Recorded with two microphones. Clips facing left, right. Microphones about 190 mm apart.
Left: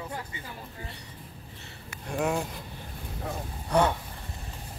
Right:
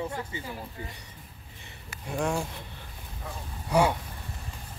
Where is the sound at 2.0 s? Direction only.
Centre (ahead or behind).